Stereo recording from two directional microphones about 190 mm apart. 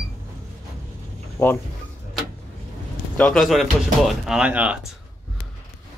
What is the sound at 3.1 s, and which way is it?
Speech, 5° left (ahead or behind).